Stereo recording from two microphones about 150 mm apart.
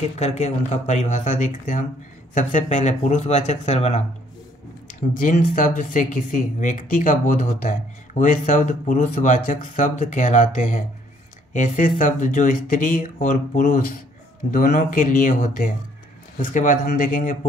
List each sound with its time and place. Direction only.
0.2 s speech: 45° left (ahead or behind)
4.8 s speech: 60° left (ahead or behind)